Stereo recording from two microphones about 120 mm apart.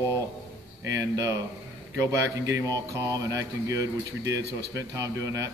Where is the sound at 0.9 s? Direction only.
25° right (ahead or behind).